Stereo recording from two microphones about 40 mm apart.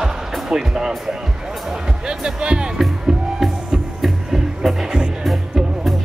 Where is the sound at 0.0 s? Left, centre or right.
Centre.